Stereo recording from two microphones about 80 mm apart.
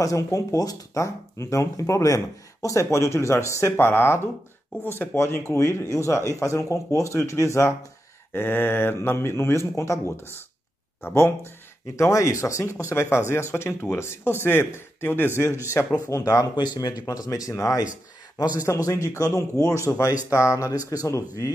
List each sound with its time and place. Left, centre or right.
0.0 s speech: left
8.3 s speech: left
12.0 s speech: left
15.4 s speech: right
16.1 s speech: left
18.4 s speech: left
18.7 s speech: left